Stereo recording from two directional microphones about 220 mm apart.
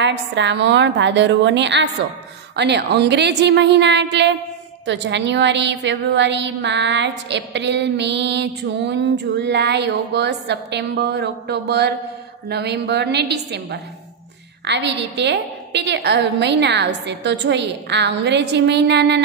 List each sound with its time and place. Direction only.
0.0 s a woman's voice: 55° right (ahead or behind)